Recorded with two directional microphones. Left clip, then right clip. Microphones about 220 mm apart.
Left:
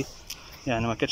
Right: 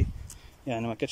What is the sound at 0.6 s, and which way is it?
Speech, 5° right (ahead or behind).